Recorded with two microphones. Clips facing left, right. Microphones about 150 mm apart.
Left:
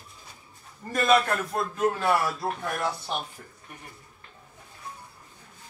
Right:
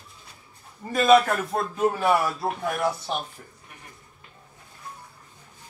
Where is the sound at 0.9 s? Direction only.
Centre (ahead or behind).